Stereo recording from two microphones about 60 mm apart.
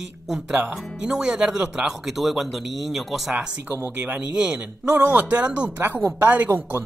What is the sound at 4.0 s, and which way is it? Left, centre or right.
Speech, centre.